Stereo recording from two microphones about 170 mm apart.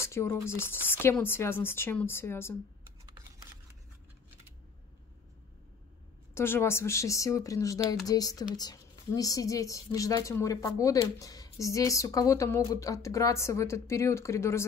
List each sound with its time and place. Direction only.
0.0 s speech: 15° left (ahead or behind)
6.3 s speech: 15° left (ahead or behind)